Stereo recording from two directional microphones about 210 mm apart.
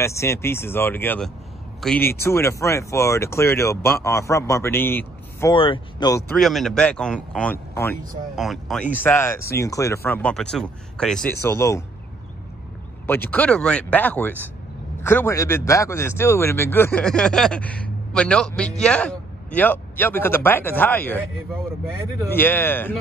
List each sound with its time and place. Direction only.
0.0 s speech: 15° left (ahead or behind)
5.5 s speech: 25° left (ahead or behind)
6.3 s a man's voice: centre (ahead or behind)
8.4 s a man's voice: centre (ahead or behind)
13.0 s speech: 10° left (ahead or behind)
22.3 s speech: 10° left (ahead or behind)